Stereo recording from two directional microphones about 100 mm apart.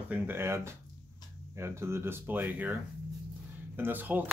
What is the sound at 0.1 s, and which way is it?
Speech, 25° right (ahead or behind).